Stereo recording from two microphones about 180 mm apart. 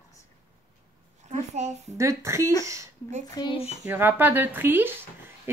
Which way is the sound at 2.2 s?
15° right (ahead or behind).